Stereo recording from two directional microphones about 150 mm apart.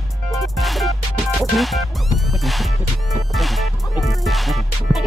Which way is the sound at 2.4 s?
Centre (ahead or behind).